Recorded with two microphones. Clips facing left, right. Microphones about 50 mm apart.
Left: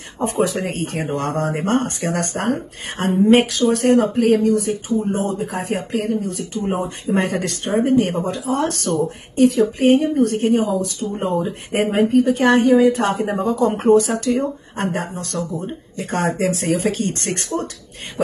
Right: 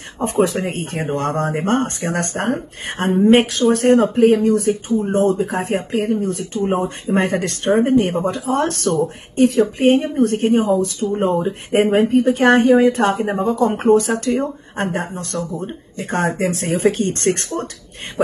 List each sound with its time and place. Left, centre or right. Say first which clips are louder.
0.2 s a woman's voice: right 2 dB; right
11.8 s a woman's voice: right 1 dB; right